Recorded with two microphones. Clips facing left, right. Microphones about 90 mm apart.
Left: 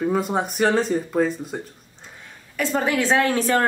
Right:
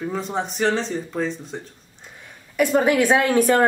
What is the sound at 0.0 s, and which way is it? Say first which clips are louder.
Speech: left 4 dB; 10° left (ahead or behind).